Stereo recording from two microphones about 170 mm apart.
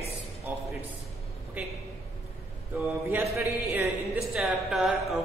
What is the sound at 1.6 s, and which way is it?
Speech, 10° right (ahead or behind).